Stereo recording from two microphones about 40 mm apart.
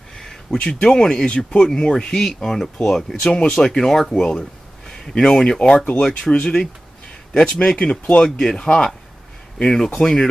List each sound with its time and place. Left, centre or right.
0.5 s speech: left; by 4.1 s centre
4.1 s speech: left
8.4 s speech: centre
9.9 s speech: centre